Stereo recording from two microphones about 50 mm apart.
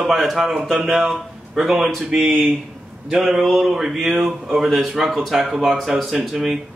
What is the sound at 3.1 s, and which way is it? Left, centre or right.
Speech, centre.